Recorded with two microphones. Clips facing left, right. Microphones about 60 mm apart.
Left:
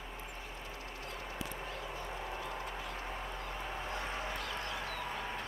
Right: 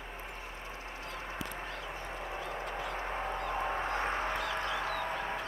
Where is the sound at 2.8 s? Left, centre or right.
Right.